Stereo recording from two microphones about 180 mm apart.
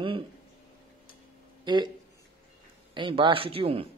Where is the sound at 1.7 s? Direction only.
25° right (ahead or behind).